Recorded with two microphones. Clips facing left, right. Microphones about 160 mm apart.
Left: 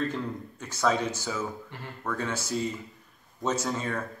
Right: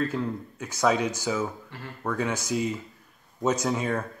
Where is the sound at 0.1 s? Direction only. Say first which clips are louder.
Right 3 dB; 10° right (ahead or behind).